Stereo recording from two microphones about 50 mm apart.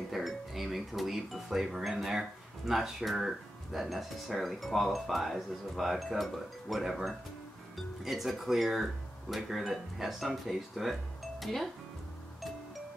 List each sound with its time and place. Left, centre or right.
0.1 s speech: centre